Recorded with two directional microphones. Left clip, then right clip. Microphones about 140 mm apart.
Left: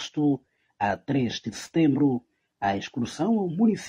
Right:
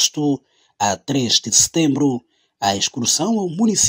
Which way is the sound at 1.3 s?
35° right (ahead or behind).